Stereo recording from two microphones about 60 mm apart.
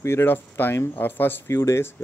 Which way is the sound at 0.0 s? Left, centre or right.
Left.